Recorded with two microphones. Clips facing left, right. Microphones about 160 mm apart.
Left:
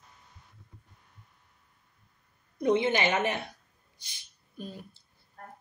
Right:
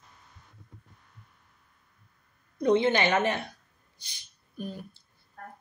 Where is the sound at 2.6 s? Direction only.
20° left (ahead or behind).